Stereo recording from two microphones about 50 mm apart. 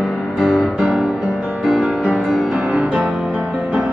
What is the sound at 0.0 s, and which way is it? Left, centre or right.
Music, centre.